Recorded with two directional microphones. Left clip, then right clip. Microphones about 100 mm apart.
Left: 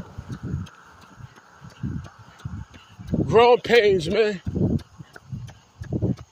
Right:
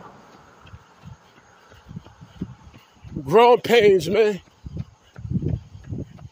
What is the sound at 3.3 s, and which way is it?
A man's voice, 90° right.